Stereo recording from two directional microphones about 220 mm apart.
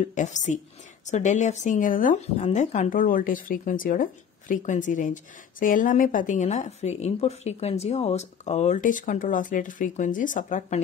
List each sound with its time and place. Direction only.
0.0 s a woman's voice: 35° left (ahead or behind)